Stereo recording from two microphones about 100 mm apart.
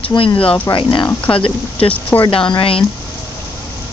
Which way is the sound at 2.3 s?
60° left (ahead or behind).